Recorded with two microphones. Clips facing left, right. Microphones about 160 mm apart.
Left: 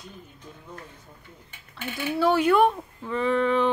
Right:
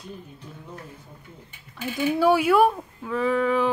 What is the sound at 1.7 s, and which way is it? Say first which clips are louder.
Speech: right 4 dB; 10° right (ahead or behind).